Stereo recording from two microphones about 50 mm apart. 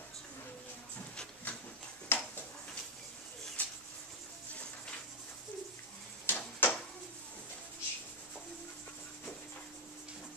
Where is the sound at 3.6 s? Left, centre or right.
Left.